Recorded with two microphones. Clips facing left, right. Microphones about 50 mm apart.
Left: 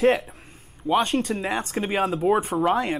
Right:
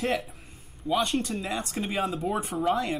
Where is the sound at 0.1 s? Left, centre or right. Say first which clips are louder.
Left 5 dB; centre.